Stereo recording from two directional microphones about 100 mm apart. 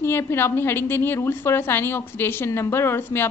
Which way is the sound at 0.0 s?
25° left (ahead or behind).